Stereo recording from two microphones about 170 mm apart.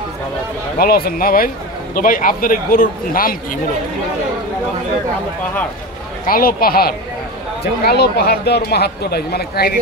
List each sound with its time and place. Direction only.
0.7 s a man's voice: 60° left (ahead or behind)
6.2 s a man's voice: 60° left (ahead or behind)